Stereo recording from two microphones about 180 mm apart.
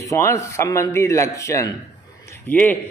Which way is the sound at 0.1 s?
15° left (ahead or behind).